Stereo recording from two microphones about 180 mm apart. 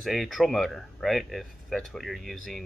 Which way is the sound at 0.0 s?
Centre (ahead or behind).